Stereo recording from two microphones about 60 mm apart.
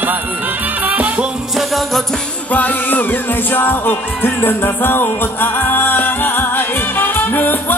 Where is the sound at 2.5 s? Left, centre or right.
Left.